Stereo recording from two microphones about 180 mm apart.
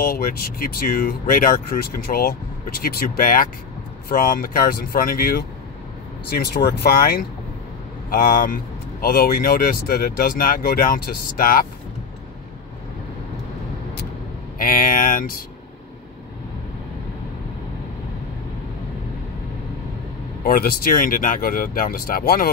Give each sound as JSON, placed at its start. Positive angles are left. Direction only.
{"t": 0.0, "sound": "speech", "side_deg": 55}
{"t": 14.6, "sound": "speech", "side_deg": 50}
{"t": 20.4, "sound": "speech", "side_deg": 55}